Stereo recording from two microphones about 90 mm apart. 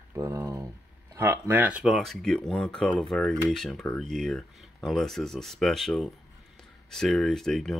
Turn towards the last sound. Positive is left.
turn(degrees=5)  # may be behind; listen again after turning